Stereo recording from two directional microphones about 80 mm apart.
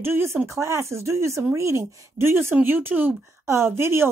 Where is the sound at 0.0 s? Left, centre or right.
Right.